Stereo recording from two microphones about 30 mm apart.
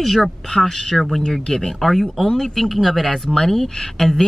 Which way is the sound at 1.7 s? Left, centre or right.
Centre.